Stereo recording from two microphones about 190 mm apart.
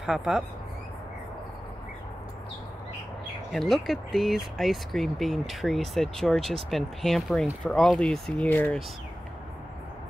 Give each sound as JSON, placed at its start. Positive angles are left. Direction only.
{"t": 0.0, "sound": "speech", "side_deg": -5}
{"t": 3.5, "sound": "speech", "side_deg": 0}